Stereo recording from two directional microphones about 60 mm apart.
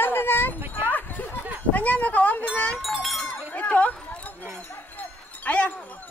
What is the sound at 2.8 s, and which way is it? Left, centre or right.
Wind chime, centre.